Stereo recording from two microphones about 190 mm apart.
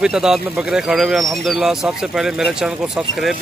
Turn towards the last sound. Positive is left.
turn(degrees=0)  # may be behind; listen again after turning